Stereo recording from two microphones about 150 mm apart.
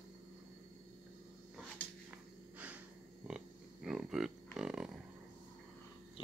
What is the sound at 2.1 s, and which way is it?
Wheeze, 10° right (ahead or behind).